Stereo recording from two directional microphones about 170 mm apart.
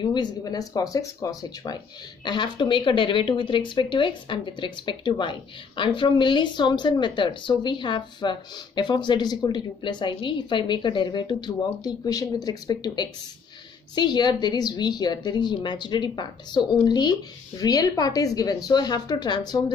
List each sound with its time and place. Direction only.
0.0 s speech: 25° left (ahead or behind)